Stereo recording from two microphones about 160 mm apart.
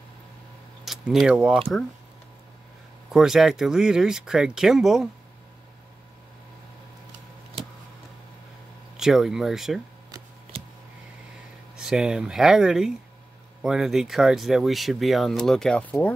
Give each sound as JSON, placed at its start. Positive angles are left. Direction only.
{"t": 0.8, "sound": "speech", "side_deg": -5}
{"t": 3.1, "sound": "speech", "side_deg": -5}
{"t": 8.9, "sound": "speech", "side_deg": -5}
{"t": 10.5, "sound": "a sound", "side_deg": -35}
{"t": 11.7, "sound": "speech", "side_deg": -5}